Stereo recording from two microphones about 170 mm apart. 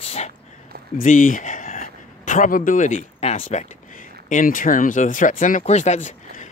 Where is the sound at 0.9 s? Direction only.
50° left (ahead or behind).